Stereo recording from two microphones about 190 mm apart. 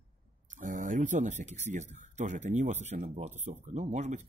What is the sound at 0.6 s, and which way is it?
A man's voice, 40° right (ahead or behind).